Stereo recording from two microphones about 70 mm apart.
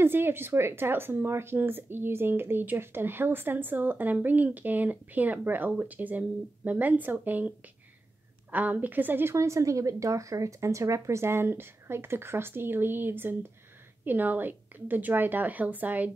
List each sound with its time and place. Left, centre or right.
0.0 s speech: right
9.3 s speech: right